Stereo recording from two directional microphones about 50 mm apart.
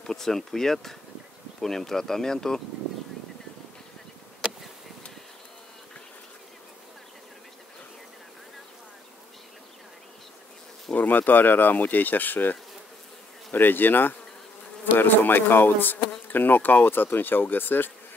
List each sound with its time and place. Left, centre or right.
0.0 s speech: centre
4.4 s insect: right
11.0 s speech: left